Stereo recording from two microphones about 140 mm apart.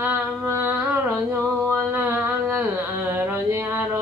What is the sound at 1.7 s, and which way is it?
Carnatic music, 15° right (ahead or behind).